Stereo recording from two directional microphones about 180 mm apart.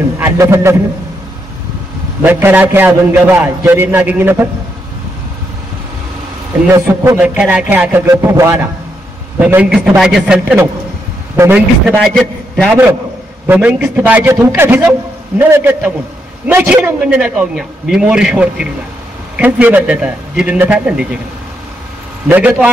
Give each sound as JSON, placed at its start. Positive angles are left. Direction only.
{"t": 0.2, "sound": "a man's voice", "side_deg": -15}
{"t": 2.2, "sound": "a man's voice", "side_deg": -10}
{"t": 6.7, "sound": "a man's voice", "side_deg": -10}
{"t": 11.8, "sound": "a man's voice", "side_deg": 5}
{"t": 13.5, "sound": "a man's voice", "side_deg": -10}
{"t": 22.3, "sound": "a man's voice", "side_deg": -10}